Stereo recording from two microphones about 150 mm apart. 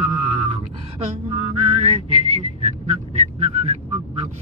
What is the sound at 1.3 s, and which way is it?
Whistling, 45° right (ahead or behind).